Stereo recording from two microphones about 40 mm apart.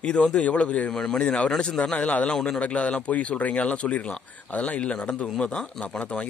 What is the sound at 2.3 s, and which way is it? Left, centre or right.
Speech, centre.